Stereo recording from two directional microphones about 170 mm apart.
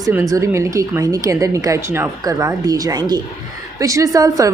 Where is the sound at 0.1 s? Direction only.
20° right (ahead or behind).